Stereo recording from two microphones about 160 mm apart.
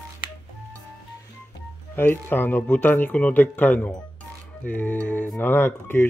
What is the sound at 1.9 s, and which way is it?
Speech, 15° left (ahead or behind).